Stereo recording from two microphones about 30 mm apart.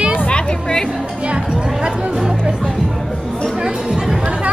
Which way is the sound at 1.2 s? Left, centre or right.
Right.